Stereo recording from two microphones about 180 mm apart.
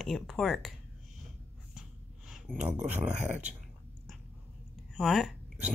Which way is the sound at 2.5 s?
10° left (ahead or behind).